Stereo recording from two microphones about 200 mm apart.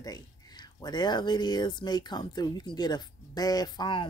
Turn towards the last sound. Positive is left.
turn(degrees=20)  # may be behind; listen again after turning